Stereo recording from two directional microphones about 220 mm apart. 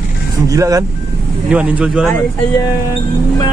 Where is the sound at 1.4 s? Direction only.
5° right (ahead or behind).